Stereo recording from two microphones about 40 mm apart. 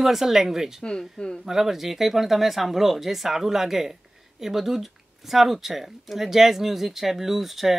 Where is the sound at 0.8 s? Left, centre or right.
Centre.